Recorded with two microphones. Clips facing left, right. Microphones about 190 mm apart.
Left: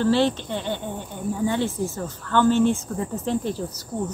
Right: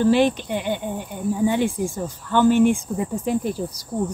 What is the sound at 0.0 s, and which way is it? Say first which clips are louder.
Speech: right 3 dB; 15° right (ahead or behind).